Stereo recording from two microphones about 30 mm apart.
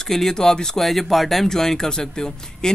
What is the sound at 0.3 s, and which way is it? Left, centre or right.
Speech, centre.